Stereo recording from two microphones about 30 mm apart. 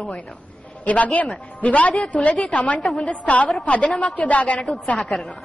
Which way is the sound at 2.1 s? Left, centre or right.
Left.